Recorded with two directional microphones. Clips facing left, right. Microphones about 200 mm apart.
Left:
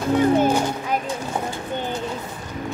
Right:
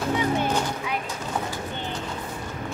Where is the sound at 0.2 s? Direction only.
45° left (ahead or behind).